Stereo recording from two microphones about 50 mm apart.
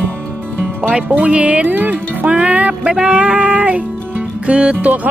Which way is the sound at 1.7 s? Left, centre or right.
Right.